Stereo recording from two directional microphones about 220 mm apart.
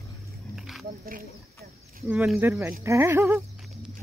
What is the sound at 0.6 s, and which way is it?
Wild animals, centre (ahead or behind).